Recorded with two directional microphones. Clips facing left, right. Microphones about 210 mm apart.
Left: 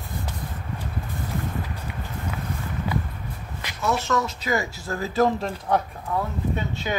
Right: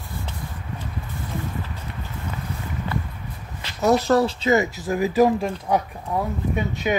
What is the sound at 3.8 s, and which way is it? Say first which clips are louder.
Speech: right 7 dB; 35° right (ahead or behind).